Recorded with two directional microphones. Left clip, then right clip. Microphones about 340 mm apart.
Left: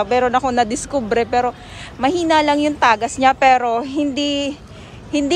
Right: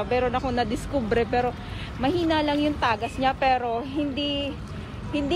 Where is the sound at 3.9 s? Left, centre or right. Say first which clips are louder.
Left 7 dB; left.